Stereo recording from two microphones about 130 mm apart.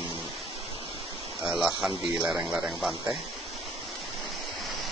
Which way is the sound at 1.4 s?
Centre (ahead or behind).